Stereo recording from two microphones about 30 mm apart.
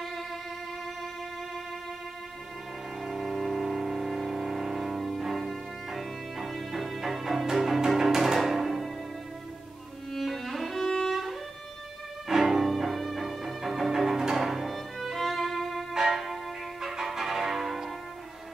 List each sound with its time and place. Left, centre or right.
3.0 s music: centre
10.1 s music: centre
10.8 s music: left
12.3 s music: centre
14.7 s violin: centre
15.9 s music: centre